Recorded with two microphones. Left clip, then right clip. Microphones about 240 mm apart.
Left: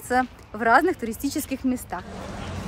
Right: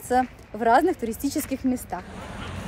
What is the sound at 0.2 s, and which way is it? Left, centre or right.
Speech, left.